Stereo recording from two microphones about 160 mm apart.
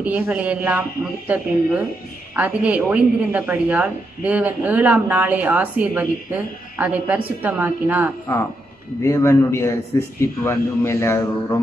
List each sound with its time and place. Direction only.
0.0 s speech: 10° right (ahead or behind)
9.0 s a man's voice: 20° left (ahead or behind)